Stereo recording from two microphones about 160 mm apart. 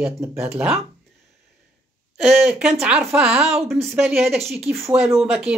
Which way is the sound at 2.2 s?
Centre (ahead or behind).